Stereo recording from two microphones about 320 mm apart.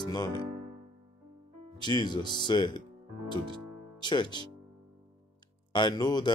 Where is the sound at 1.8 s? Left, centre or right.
Centre.